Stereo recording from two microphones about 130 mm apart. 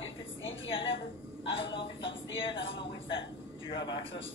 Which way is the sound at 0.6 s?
45° left (ahead or behind).